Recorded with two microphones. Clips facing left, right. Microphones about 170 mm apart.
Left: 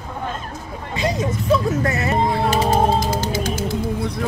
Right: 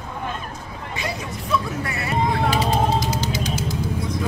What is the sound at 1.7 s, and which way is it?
Music, 40° left (ahead or behind).